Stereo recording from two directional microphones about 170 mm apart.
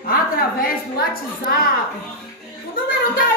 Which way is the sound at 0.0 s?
60° left (ahead or behind).